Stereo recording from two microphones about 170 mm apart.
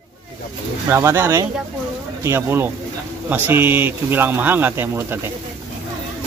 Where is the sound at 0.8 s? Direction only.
15° right (ahead or behind).